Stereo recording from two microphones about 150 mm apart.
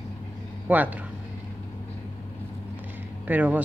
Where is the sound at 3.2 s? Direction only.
10° right (ahead or behind).